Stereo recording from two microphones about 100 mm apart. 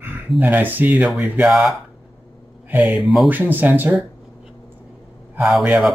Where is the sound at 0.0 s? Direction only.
20° right (ahead or behind).